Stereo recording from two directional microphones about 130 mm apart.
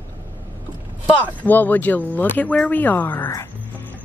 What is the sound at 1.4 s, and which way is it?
Speech, 15° left (ahead or behind).